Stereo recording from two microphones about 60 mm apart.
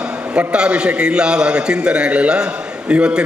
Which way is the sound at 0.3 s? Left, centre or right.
Centre.